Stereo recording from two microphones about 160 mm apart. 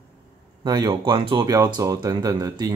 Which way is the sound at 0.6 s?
25° right (ahead or behind).